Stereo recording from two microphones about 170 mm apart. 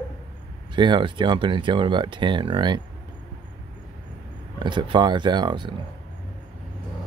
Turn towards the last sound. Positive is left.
turn(degrees=-25)  # may be behind; listen again after turning